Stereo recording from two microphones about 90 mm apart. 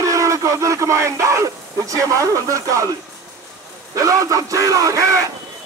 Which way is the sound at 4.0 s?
40° right (ahead or behind).